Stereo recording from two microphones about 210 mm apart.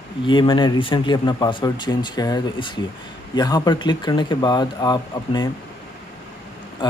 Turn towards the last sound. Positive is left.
turn(degrees=20)  # may be behind; listen again after turning